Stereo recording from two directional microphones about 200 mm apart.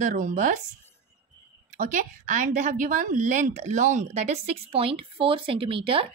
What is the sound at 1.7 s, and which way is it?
Speech, 40° right (ahead or behind).